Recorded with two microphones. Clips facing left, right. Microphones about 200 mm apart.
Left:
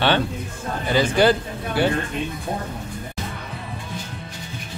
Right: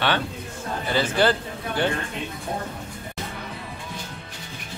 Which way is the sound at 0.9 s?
15° left (ahead or behind).